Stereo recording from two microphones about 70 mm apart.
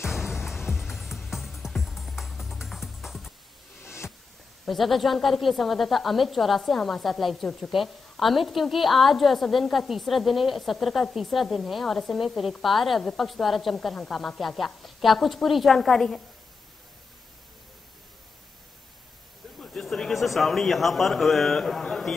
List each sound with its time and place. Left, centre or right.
0.1 s music: centre
3.8 s a sound: left
4.6 s a woman's voice: centre
19.6 s a man's voice: centre